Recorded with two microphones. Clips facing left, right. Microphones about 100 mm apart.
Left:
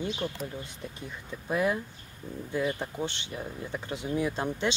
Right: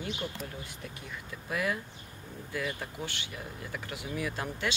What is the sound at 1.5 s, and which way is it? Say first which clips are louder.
Speech: left 5 dB; 25° left (ahead or behind).